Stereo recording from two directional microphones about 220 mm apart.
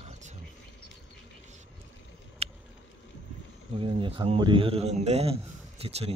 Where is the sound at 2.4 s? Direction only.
30° right (ahead or behind).